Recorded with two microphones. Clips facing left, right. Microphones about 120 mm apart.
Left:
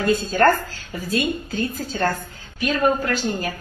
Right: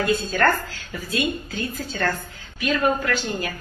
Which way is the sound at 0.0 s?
40° left (ahead or behind).